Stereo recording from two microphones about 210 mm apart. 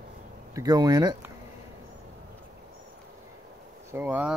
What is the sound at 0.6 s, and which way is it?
Speech, 20° right (ahead or behind).